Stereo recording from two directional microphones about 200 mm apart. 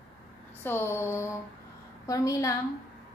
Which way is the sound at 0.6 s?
10° left (ahead or behind).